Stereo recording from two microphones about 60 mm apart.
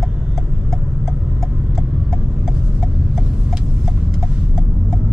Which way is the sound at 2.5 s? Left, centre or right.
Centre.